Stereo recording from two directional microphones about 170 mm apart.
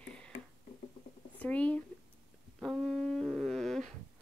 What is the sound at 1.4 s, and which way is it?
Speech, 10° left (ahead or behind).